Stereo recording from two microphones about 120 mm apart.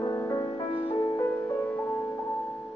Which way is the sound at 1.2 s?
20° left (ahead or behind).